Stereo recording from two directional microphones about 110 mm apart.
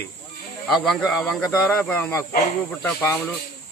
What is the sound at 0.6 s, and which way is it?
Speech, 5° left (ahead or behind).